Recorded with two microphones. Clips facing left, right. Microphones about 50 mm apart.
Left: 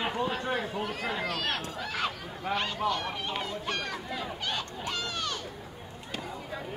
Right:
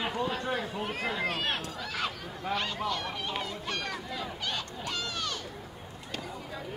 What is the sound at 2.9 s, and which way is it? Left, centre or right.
Speech, left.